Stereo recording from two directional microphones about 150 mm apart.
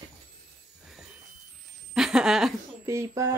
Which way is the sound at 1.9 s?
5° right (ahead or behind).